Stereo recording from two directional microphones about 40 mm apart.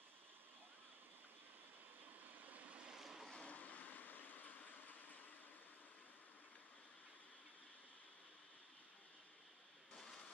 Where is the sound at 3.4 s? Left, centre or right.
Left.